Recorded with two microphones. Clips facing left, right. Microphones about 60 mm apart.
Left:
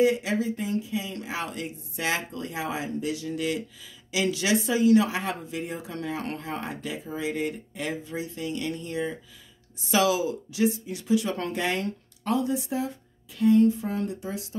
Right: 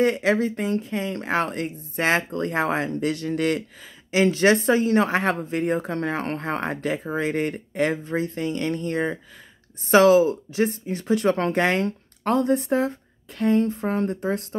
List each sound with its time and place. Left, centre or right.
0.0 s speech: right
4.1 s speech: right
9.8 s speech: right